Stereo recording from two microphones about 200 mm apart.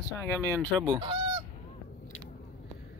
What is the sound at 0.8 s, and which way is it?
Goose, 25° right (ahead or behind).